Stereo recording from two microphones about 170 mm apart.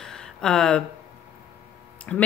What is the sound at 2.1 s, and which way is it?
Speech, 5° left (ahead or behind).